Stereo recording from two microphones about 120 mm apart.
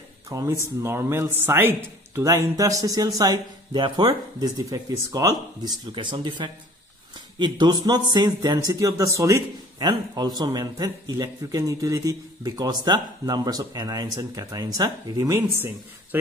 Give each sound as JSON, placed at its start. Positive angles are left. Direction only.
{"t": 0.3, "sound": "speech", "side_deg": -25}
{"t": 5.9, "sound": "speech", "side_deg": -45}
{"t": 15.5, "sound": "speech", "side_deg": -20}